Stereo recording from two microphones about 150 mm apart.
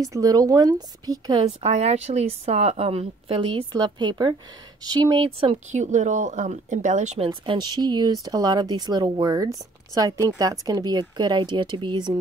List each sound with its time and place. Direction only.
0.0 s speech: 25° right (ahead or behind)
1.6 s a woman's voice: 45° right (ahead or behind)
5.7 s a woman's voice: 55° right (ahead or behind)
7.2 s speech: 30° right (ahead or behind)